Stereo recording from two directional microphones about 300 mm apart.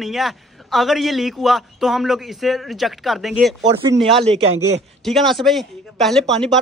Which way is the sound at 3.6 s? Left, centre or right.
Centre.